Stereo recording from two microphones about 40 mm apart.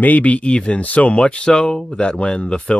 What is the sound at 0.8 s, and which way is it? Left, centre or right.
Speech, left.